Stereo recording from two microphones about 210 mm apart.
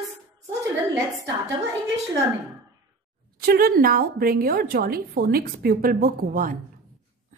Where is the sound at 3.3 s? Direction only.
45° right (ahead or behind).